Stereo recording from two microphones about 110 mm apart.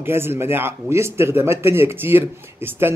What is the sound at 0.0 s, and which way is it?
Speech, 20° right (ahead or behind).